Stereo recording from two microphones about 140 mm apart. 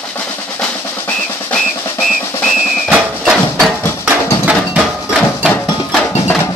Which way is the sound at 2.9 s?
10° right (ahead or behind).